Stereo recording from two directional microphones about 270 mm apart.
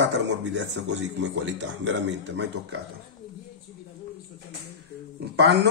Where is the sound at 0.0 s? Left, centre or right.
Right.